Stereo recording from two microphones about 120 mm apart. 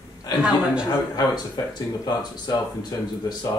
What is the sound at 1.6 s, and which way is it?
Speech, 30° left (ahead or behind).